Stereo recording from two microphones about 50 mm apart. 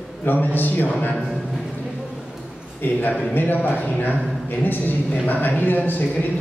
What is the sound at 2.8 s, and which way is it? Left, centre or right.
Speech, left.